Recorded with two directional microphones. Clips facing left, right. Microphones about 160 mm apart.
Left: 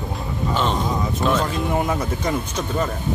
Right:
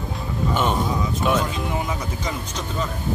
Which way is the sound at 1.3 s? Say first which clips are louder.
Even; 5° right (ahead or behind).